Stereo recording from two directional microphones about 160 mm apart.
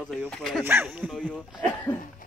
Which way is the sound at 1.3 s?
5° left (ahead or behind).